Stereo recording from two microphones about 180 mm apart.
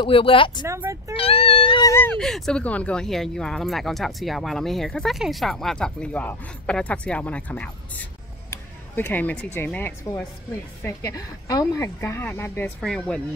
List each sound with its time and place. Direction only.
0.0 s speech: 30° left (ahead or behind)
0.7 s speech: 15° right (ahead or behind)
1.1 s a sound: 30° left (ahead or behind)
1.9 s a woman's voice: 10° left (ahead or behind)